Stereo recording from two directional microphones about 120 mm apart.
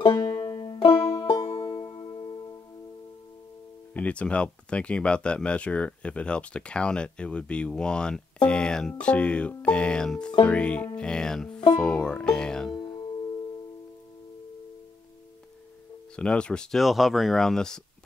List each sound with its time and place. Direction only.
0.0 s banjo: 40° left (ahead or behind)
1.1 s music: 25° left (ahead or behind)
1.6 s music: 40° left (ahead or behind)
3.9 s speech: 10° left (ahead or behind)
12.7 s music: 40° left (ahead or behind)
16.2 s speech: 10° left (ahead or behind)